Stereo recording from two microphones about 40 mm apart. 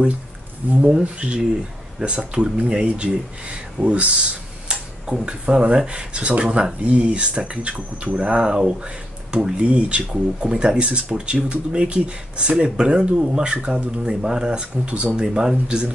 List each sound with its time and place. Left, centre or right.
0.8 s speech: right